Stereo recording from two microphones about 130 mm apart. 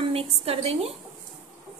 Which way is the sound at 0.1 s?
50° right (ahead or behind).